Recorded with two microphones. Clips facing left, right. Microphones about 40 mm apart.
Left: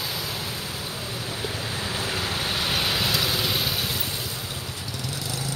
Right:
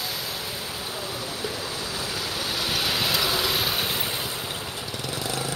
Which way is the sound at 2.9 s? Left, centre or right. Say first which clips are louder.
Even; centre.